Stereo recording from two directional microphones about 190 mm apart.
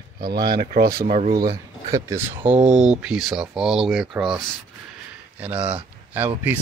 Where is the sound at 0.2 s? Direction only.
55° right (ahead or behind).